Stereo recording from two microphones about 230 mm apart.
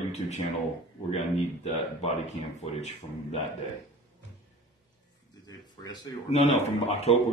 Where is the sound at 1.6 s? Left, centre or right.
Left.